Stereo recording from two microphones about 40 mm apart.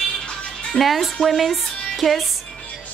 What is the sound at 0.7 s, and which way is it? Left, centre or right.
Speech, centre.